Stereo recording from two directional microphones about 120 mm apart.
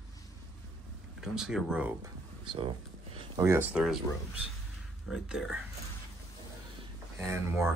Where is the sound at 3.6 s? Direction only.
5° right (ahead or behind).